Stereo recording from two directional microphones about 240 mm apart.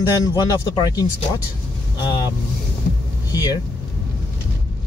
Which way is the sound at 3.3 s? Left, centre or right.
Centre.